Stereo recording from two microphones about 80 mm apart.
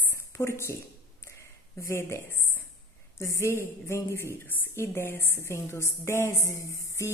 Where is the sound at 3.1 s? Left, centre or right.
Left.